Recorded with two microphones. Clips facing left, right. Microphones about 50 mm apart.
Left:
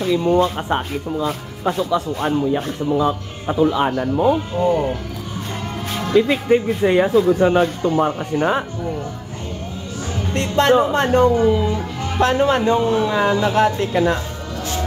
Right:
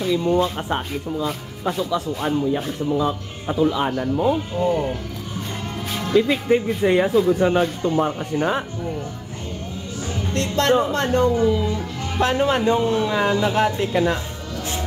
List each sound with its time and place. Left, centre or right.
0.0 s speech: left
4.1 s speech: left
5.9 s music: left
6.1 s speech: left
7.1 s speech: left
7.4 s speech: left
7.8 s speech: left
10.3 s speech: left
13.1 s speech: left